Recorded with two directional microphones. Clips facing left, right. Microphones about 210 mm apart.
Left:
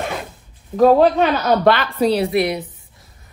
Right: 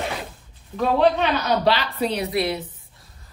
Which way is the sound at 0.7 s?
40° left (ahead or behind).